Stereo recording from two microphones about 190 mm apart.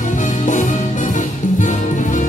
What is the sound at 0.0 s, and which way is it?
Music, 40° left (ahead or behind).